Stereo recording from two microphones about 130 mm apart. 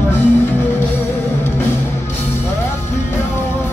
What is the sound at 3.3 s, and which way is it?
Music, 20° left (ahead or behind).